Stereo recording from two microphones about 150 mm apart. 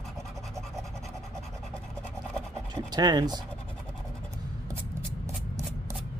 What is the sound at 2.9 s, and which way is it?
Speech, 30° right (ahead or behind).